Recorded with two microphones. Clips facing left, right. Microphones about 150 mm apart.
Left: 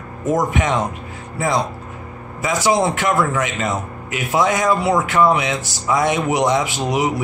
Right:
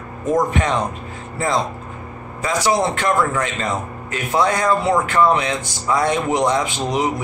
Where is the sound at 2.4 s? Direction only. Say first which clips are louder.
Left 1 dB; 15° left (ahead or behind).